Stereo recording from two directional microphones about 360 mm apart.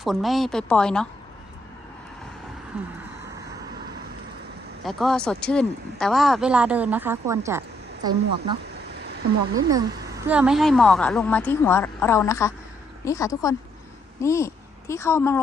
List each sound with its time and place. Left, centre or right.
0.0 s a woman's voice: centre
4.8 s a woman's voice: centre
8.8 s a sound: right
9.5 s a woman's voice: centre